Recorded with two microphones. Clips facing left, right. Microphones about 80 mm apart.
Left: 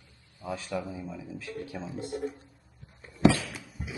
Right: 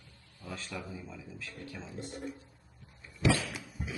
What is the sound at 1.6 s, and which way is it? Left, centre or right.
Speech, centre.